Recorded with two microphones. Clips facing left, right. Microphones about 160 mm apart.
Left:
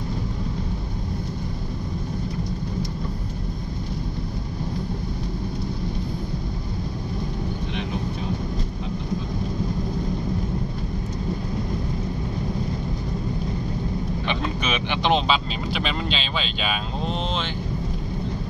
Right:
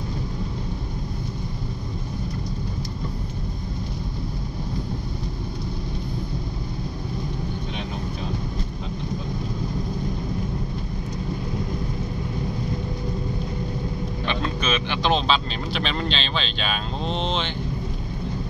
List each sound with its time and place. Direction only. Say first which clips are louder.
14.2 s speech: right 3 dB; 15° left (ahead or behind)